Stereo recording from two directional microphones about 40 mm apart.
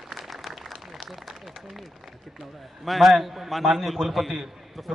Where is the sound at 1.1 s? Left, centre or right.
Centre.